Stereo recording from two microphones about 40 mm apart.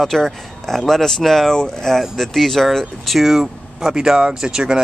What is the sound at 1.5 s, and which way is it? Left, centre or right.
Speech, centre.